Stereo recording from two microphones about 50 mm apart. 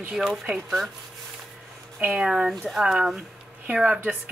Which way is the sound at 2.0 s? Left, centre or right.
Centre.